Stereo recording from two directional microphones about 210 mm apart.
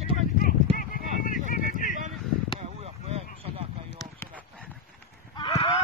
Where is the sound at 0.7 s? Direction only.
40° left (ahead or behind).